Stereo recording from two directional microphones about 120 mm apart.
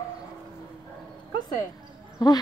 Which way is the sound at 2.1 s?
35° left (ahead or behind).